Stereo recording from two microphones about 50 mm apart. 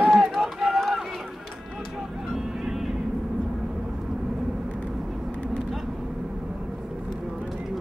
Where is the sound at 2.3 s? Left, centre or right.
Centre.